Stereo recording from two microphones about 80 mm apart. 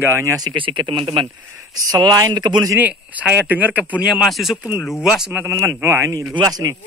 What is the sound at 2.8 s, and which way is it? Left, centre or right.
Speech, centre.